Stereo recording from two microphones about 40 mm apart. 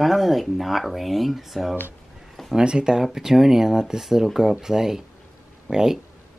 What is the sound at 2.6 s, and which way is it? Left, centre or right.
Speech, right.